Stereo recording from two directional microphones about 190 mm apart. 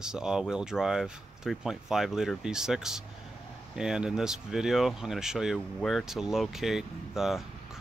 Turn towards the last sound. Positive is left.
turn(degrees=0)  # may be behind; listen again after turning